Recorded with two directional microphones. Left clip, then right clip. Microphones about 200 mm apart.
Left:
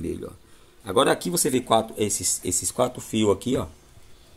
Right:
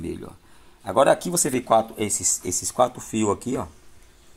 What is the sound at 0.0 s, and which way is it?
Speech, centre (ahead or behind).